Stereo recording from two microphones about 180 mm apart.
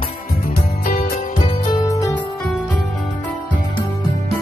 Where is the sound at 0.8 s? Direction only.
50° left (ahead or behind).